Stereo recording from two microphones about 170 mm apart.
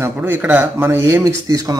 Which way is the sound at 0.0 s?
15° right (ahead or behind).